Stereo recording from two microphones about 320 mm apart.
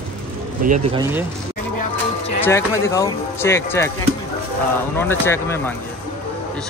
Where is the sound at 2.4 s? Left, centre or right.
Centre.